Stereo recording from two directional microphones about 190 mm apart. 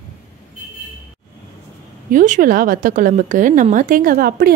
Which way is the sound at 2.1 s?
45° right (ahead or behind).